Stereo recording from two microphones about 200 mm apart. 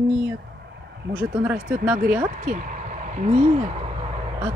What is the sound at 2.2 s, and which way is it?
Speech, 40° right (ahead or behind).